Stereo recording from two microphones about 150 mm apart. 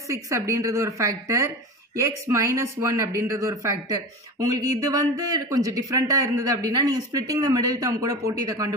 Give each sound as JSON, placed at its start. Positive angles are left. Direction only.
{"t": 0.1, "sound": "speech", "side_deg": -20}